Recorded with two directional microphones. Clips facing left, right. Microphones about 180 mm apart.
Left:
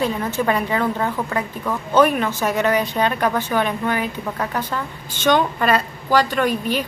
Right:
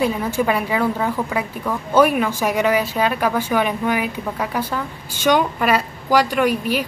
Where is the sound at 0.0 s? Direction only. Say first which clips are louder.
Right 1 dB; 10° right (ahead or behind).